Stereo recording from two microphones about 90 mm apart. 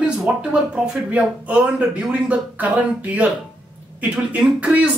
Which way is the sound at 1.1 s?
15° right (ahead or behind).